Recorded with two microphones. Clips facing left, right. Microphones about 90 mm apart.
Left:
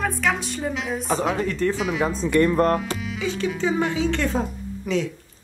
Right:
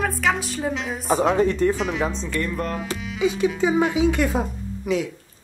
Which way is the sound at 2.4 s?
50° left (ahead or behind).